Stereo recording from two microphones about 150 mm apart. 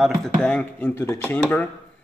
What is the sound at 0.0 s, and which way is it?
Speech, 5° left (ahead or behind).